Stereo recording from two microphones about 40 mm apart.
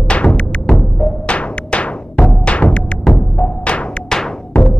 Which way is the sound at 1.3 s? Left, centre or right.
Left.